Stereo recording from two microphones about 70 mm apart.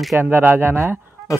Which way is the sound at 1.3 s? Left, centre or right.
Left.